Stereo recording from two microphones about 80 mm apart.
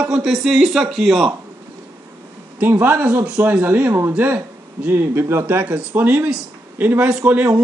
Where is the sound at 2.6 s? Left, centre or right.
Right.